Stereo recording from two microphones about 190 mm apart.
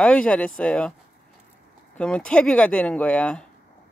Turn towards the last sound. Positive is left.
turn(degrees=5)  # may be behind; listen again after turning